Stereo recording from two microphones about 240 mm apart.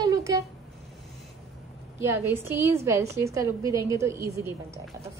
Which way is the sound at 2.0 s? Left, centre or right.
Centre.